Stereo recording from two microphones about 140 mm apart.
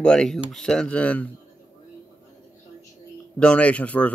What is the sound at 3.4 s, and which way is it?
Speech, 10° left (ahead or behind).